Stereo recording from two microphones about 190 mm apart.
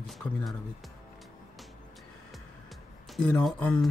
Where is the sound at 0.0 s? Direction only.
Centre (ahead or behind).